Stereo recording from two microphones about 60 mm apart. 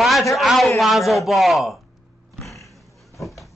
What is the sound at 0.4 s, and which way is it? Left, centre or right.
A man's voice, centre.